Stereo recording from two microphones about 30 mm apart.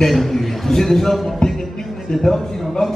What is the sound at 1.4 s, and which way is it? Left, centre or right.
Music, left.